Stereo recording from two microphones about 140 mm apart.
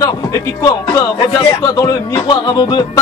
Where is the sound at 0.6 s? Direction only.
35° left (ahead or behind).